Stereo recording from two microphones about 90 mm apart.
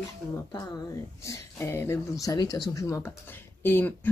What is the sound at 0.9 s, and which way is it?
Speech, 30° left (ahead or behind).